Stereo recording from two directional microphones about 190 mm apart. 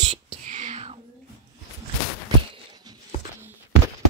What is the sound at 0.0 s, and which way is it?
Whispering, 30° right (ahead or behind).